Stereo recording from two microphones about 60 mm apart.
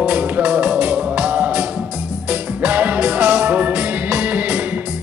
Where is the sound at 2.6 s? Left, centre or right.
Right.